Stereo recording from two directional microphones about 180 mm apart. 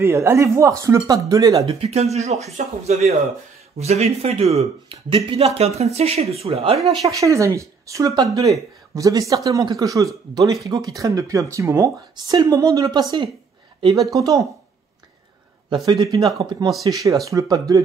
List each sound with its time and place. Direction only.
0.0 s speech: 15° right (ahead or behind)
1.7 s speech: 35° right (ahead or behind)
6.9 s speech: 20° right (ahead or behind)
14.1 s speech: 20° right (ahead or behind)
15.7 s speech: 20° right (ahead or behind)